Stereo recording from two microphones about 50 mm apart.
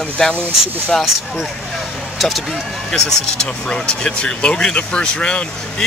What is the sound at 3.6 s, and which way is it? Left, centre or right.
Speech, centre.